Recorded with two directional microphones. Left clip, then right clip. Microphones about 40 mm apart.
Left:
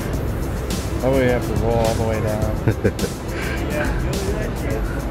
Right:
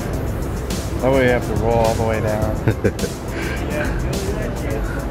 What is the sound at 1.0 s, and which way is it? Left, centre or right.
Speech, centre.